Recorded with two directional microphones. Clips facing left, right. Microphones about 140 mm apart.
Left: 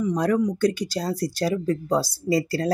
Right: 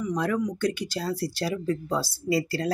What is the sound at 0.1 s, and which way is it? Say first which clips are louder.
A woman's voice: left 3 dB; 35° left (ahead or behind).